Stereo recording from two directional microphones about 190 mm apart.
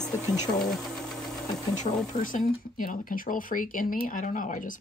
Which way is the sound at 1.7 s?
45° left (ahead or behind).